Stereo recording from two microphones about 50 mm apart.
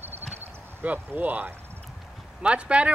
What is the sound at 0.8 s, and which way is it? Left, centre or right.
Speech, right.